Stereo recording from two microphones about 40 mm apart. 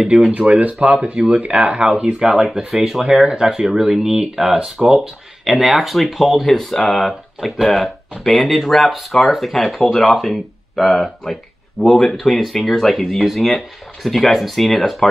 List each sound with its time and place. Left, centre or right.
0.1 s speech: right
0.5 s speech: right
2.1 s speech: centre